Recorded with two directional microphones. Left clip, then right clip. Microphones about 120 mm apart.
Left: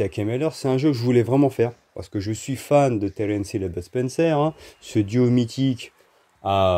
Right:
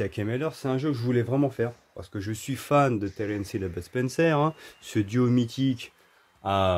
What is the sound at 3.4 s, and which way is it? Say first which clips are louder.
Speech: left 5 dB; 15° left (ahead or behind).